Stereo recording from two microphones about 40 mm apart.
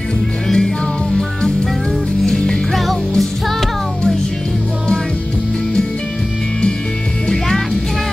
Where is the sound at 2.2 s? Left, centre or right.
Centre.